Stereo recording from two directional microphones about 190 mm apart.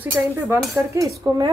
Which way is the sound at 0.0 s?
10° right (ahead or behind).